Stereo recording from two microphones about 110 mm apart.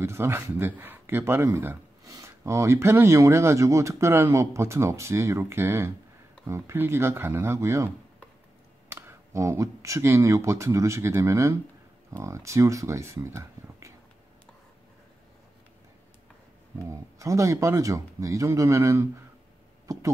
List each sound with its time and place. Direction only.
0.0 s speech: 25° right (ahead or behind)
2.0 s speech: 30° right (ahead or behind)
16.7 s speech: 30° right (ahead or behind)
19.9 s a sound: 30° right (ahead or behind)